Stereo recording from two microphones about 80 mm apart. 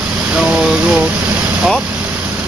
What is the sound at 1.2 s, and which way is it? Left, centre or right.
Vehicle, right.